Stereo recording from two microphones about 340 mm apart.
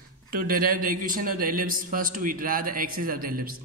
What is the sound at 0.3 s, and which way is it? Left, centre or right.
A woman's voice, right.